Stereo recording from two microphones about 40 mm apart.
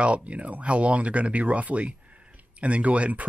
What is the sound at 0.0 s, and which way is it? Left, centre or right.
Speech, right.